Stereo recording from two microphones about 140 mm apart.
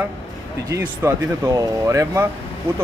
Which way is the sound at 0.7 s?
20° right (ahead or behind).